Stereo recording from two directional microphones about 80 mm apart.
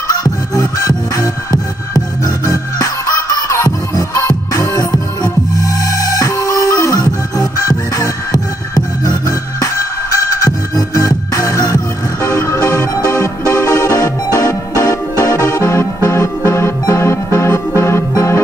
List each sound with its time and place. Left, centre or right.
0.1 s music: left
10.1 s music: left